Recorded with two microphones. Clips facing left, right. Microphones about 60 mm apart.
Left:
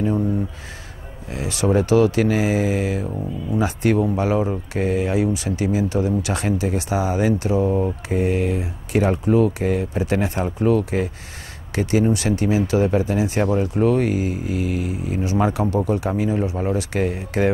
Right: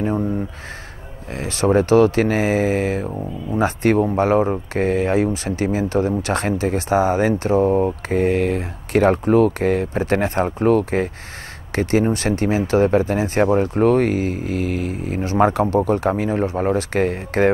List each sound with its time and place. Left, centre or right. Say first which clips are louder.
1.3 s speech: right 2 dB; right